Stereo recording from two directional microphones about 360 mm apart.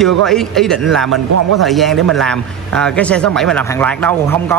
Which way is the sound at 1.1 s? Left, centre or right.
Right.